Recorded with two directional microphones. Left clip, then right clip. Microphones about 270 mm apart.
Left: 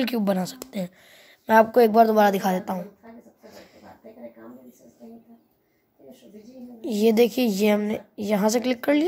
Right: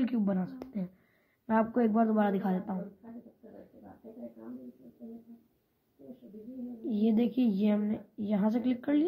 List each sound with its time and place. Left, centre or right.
0.0 s a woman's voice: left
6.8 s a woman's voice: left